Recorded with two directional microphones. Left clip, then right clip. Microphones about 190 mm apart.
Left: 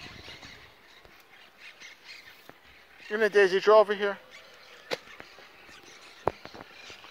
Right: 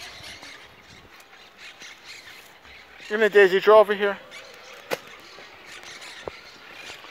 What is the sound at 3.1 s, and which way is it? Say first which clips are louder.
Speech: right 6 dB; 5° right (ahead or behind).